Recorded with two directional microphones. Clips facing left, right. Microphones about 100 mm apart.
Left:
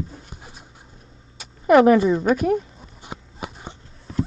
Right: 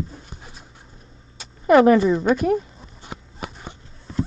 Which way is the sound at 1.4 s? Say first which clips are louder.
Even; 5° left (ahead or behind).